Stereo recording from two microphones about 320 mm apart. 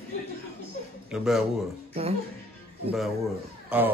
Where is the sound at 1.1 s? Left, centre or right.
Centre.